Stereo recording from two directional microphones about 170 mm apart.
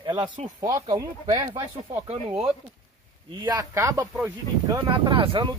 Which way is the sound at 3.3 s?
20° right (ahead or behind).